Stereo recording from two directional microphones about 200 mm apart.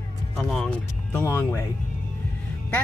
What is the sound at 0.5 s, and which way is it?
Speech, 5° left (ahead or behind).